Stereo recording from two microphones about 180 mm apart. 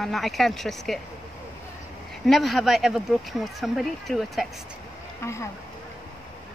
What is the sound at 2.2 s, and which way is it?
Speech, centre (ahead or behind).